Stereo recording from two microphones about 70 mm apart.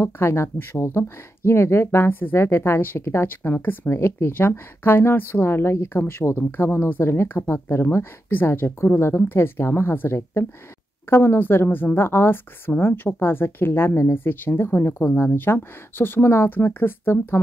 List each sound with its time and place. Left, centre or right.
0.0 s speech: left